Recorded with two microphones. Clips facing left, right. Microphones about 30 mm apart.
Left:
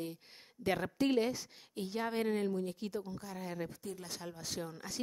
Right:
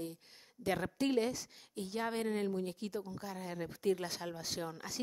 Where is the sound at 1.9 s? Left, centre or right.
Centre.